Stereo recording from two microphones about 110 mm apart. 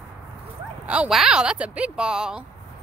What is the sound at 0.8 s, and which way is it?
Speech, 10° right (ahead or behind).